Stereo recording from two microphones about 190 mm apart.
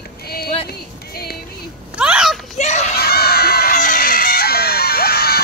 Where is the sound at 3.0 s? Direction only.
55° left (ahead or behind).